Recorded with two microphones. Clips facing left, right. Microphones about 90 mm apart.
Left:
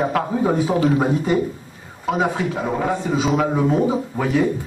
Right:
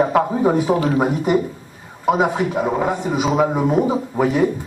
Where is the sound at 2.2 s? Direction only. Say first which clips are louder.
Right 3 dB; 10° right (ahead or behind).